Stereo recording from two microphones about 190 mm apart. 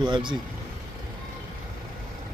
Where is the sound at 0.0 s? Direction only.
25° right (ahead or behind).